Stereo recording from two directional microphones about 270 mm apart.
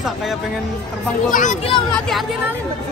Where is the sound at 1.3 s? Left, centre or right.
Left.